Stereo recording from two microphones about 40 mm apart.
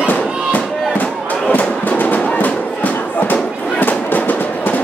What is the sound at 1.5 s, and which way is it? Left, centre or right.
Music, left.